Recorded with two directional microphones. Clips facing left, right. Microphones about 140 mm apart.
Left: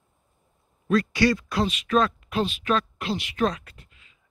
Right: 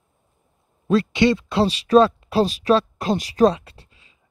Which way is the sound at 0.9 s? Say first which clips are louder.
Right 4 dB; 25° right (ahead or behind).